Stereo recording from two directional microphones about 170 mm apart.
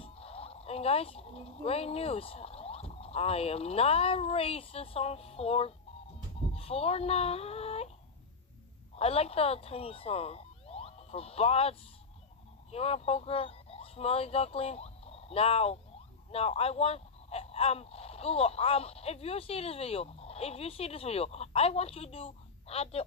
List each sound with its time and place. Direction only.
0.0 s speech: 35° left (ahead or behind)
8.9 s speech: 35° left (ahead or behind)
12.7 s speech: 35° left (ahead or behind)